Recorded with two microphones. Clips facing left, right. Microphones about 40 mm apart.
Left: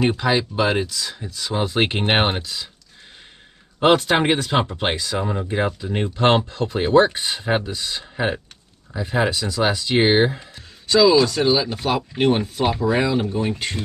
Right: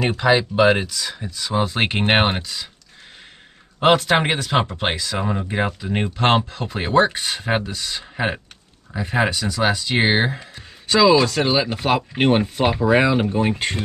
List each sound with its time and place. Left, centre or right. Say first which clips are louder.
0.1 s speech: right 3 dB; centre
3.8 s speech: even; centre
5.2 s speech: right 1 dB; centre
6.1 s speech: left 1 dB; centre
7.6 s speech: even; centre
11.0 s speech: even; right
13.0 s speech: right 3 dB; right